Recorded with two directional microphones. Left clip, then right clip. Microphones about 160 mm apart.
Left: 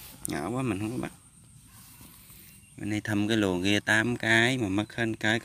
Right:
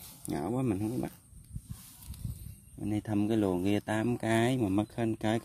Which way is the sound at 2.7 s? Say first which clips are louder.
Left 3 dB; 15° right (ahead or behind).